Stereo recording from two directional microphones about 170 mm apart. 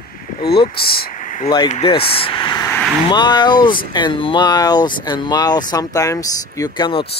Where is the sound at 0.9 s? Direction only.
55° left (ahead or behind).